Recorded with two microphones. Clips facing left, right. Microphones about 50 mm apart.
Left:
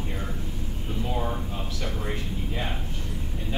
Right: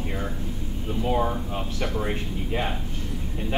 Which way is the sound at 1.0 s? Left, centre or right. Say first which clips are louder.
Right 6 dB; right.